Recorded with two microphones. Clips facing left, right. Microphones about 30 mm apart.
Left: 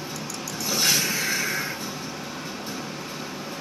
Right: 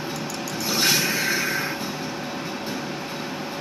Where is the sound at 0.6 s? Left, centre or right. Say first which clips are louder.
Right 2 dB; right.